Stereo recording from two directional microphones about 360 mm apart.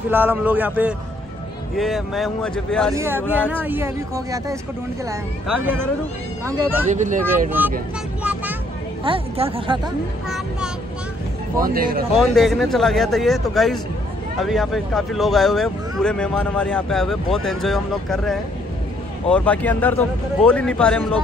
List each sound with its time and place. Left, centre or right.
0.1 s speech: centre
5.6 s speech: centre
6.9 s speech: centre
7.6 s speech: centre
8.2 s vehicle: centre
9.0 s speech: centre
11.6 s speech: right
12.2 s speech: centre